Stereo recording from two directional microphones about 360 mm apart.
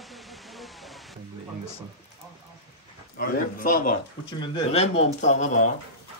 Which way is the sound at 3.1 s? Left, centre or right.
Left.